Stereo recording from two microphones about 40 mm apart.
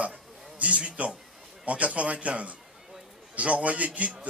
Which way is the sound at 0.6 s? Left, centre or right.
Right.